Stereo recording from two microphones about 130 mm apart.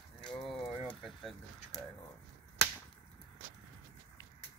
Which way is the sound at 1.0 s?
Centre (ahead or behind).